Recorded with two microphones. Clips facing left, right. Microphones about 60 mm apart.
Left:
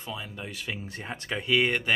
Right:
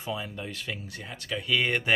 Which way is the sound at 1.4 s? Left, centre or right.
Centre.